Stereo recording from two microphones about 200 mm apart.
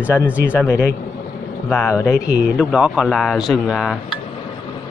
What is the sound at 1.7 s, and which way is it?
Speech, 10° left (ahead or behind).